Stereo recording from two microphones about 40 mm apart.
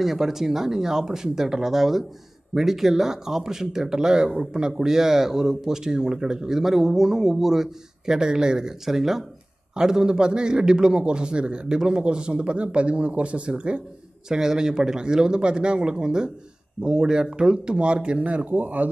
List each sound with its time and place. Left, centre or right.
0.0 s a man's voice: centre; by 13.8 s right
14.3 s a man's voice: centre
18.2 s speech: right